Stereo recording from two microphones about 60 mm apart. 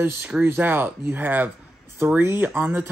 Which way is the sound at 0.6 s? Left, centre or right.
Right.